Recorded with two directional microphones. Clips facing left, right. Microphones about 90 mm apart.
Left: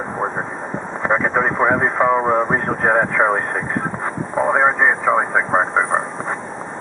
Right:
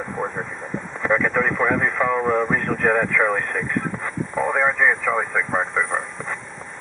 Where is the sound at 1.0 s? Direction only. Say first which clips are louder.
Left 2 dB; 35° left (ahead or behind).